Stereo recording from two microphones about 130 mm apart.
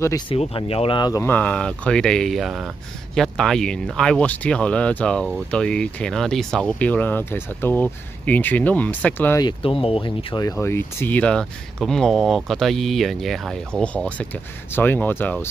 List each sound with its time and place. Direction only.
0.3 s speech: 45° left (ahead or behind)
1.2 s speech: 10° left (ahead or behind)
9.4 s speech: 40° left (ahead or behind)
10.6 s speech: 20° left (ahead or behind)